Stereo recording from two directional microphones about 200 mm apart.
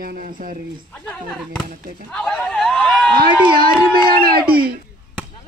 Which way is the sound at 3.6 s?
50° right (ahead or behind).